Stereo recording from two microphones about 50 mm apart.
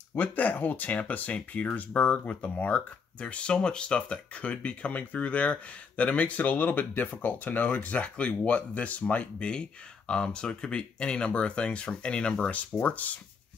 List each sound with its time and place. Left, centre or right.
0.1 s speech: left
9.5 s speech: centre